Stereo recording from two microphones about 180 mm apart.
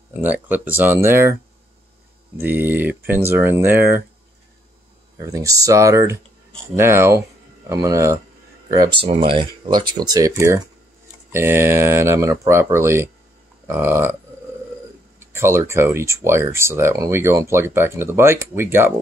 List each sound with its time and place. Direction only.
0.2 s speech: 10° right (ahead or behind)
2.3 s speech: 10° right (ahead or behind)
5.1 s speech: 20° right (ahead or behind)
15.1 s speech: 15° right (ahead or behind)